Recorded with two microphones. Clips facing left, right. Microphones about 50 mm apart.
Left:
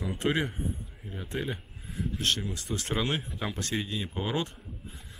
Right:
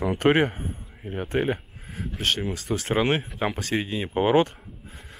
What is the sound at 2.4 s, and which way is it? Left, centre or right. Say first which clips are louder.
Speech: right 7 dB; right.